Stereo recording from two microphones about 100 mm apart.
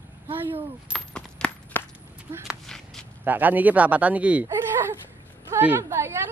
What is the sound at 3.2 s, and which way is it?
Speech, 15° right (ahead or behind).